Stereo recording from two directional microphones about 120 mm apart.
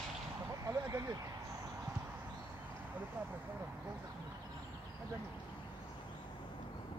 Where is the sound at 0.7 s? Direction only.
25° right (ahead or behind).